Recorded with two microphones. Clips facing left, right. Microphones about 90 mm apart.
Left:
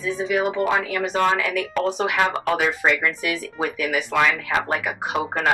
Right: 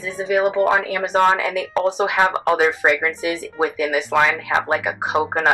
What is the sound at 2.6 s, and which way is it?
Speech, 30° right (ahead or behind).